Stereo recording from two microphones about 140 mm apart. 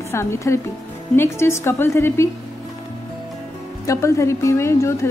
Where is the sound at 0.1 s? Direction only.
20° left (ahead or behind).